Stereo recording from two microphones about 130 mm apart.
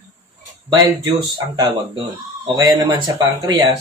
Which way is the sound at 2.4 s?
35° right (ahead or behind).